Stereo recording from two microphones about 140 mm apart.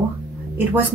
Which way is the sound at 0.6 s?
10° right (ahead or behind).